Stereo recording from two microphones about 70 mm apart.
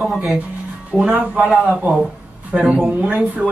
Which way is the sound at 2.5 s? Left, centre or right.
Centre.